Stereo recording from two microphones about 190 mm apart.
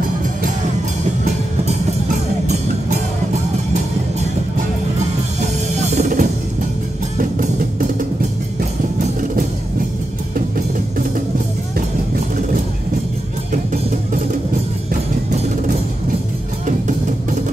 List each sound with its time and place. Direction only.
5.8 s drum kit: 35° right (ahead or behind)
16.6 s music: 40° right (ahead or behind)